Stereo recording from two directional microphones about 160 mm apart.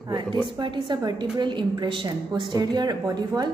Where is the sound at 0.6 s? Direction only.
30° right (ahead or behind).